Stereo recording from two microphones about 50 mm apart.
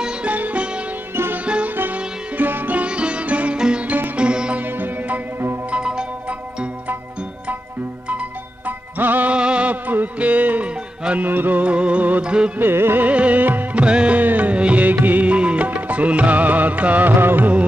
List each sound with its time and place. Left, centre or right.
0.0 s music: right
2.3 s music: right; by 3.8 s centre
3.8 s music: right
4.2 s sitar: right
4.6 s music: right
5.7 s music: centre
8.6 s music: right
9.3 s music: right
9.8 s music: right
11.6 s music: right
12.5 s music: right
13.0 s music: right
13.7 s music: right